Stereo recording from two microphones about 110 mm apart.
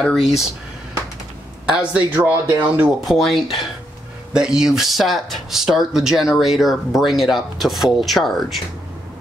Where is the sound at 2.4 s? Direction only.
25° right (ahead or behind).